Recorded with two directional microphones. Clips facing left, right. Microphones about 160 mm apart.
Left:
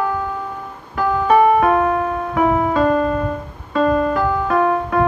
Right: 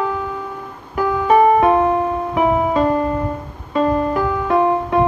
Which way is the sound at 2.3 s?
10° right (ahead or behind).